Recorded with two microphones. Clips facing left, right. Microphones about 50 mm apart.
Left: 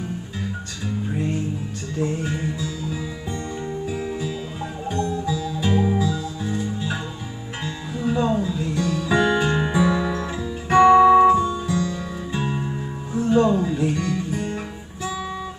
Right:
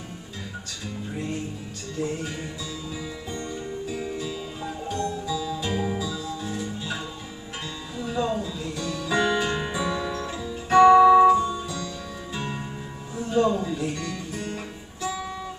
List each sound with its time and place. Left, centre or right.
2.2 s music: centre
4.0 s music: centre
5.6 s music: centre
7.6 s music: left
10.9 s music: left
11.2 s music: centre
13.1 s music: left